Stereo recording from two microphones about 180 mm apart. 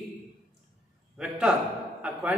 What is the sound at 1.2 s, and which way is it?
A man's voice, 5° right (ahead or behind).